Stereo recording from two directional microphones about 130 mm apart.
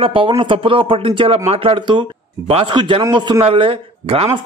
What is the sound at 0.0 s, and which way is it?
A man's voice, 45° right (ahead or behind).